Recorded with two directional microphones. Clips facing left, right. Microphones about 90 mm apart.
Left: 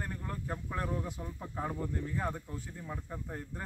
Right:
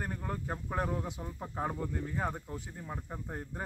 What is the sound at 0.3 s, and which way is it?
Speech, 20° right (ahead or behind).